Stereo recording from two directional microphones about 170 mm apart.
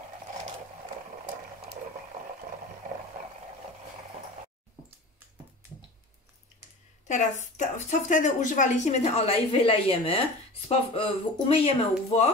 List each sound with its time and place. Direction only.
7.1 s a woman's voice: 45° left (ahead or behind)